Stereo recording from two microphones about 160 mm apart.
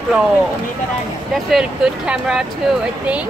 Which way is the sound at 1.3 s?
5° right (ahead or behind).